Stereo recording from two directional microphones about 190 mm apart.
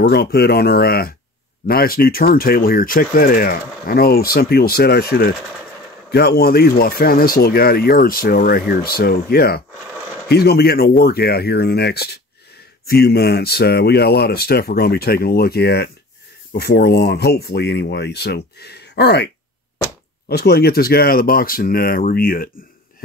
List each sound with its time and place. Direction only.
0.0 s speech: 60° left (ahead or behind)